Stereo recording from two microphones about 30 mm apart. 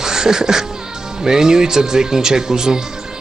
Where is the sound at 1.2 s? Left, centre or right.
Right.